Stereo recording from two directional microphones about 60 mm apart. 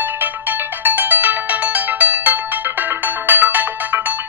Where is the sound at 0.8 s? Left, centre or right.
Right.